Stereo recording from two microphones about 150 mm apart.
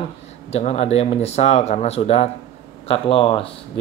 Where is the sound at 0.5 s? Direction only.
45° left (ahead or behind).